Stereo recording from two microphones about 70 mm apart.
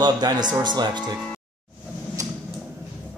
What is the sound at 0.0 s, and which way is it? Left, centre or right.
Speech, right.